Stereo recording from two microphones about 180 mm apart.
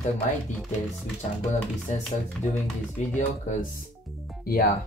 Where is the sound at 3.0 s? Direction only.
40° left (ahead or behind).